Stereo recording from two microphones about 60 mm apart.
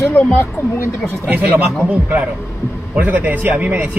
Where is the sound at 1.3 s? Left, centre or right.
Right.